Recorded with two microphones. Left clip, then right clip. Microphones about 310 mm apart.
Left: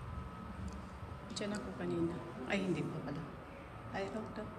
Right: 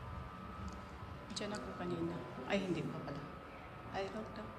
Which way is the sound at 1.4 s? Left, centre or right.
Centre.